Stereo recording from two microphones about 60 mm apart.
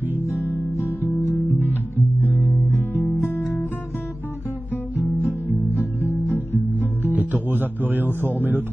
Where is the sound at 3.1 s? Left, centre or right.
Left.